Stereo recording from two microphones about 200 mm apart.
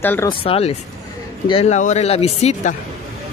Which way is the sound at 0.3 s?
30° left (ahead or behind).